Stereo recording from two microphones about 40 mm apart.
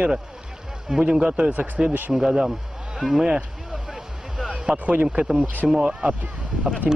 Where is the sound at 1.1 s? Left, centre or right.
Right; by 2.5 s centre.